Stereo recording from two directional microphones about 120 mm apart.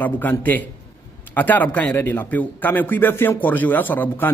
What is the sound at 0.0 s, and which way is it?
A man's voice, 15° left (ahead or behind).